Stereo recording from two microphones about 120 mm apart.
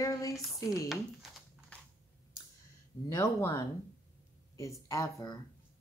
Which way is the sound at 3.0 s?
30° left (ahead or behind).